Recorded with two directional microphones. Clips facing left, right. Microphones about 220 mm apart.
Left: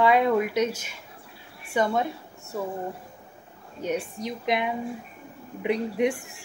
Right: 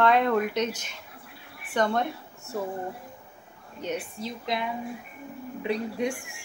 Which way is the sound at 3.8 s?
15° left (ahead or behind).